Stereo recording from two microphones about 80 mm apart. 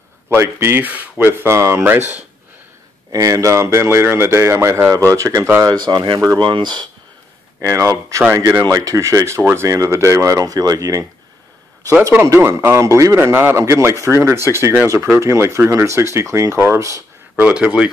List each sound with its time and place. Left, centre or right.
0.3 s speech: right
3.1 s speech: right
5.7 s speech: right
7.6 s speech: right
12.0 s speech: right
17.4 s speech: centre